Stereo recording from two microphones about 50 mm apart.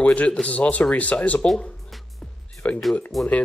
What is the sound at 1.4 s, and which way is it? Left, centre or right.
Music, centre.